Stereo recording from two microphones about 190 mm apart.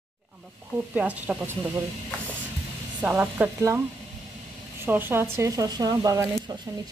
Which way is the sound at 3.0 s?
10° right (ahead or behind).